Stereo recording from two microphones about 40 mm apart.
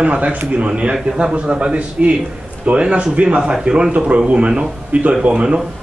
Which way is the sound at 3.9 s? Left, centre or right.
Right.